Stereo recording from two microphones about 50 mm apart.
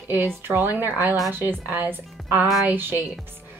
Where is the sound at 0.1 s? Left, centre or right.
Right.